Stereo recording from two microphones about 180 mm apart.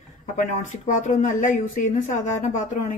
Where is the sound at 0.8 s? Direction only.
45° left (ahead or behind).